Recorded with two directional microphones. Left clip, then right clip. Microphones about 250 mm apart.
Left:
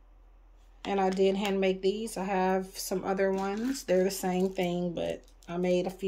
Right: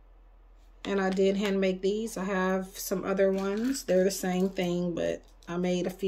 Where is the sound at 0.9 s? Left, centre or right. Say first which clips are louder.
Even; centre.